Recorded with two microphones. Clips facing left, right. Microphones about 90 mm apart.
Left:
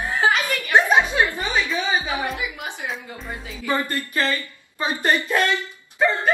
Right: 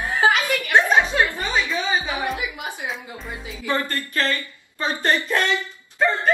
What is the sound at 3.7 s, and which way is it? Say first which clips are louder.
Speech: left 1 dB; 15° left (ahead or behind).